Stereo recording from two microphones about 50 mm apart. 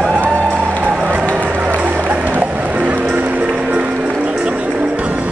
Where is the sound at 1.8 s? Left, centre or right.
Right.